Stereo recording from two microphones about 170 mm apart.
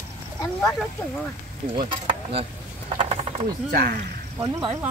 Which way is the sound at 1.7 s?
30° right (ahead or behind).